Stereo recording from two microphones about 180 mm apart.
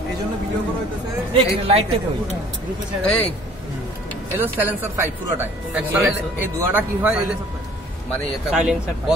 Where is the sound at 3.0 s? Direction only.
5° left (ahead or behind).